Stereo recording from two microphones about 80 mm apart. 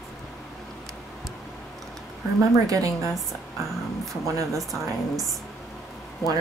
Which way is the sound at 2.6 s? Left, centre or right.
Right.